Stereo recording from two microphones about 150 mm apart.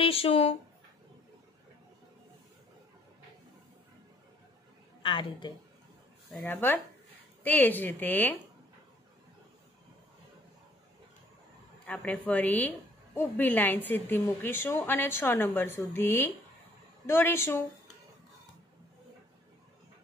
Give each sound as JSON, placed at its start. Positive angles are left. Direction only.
{"t": 0.0, "sound": "speech", "side_deg": 40}
{"t": 5.0, "sound": "speech", "side_deg": 35}
{"t": 6.4, "sound": "a woman's voice", "side_deg": 15}
{"t": 11.8, "sound": "a woman's voice", "side_deg": 5}